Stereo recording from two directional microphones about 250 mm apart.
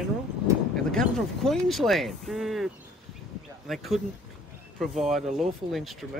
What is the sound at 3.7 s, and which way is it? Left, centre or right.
Speech, centre.